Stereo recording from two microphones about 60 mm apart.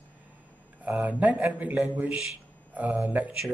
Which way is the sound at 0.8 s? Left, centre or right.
Right.